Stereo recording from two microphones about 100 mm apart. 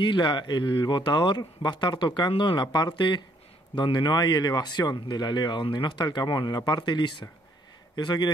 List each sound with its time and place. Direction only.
0.0 s a man's voice: 50° left (ahead or behind)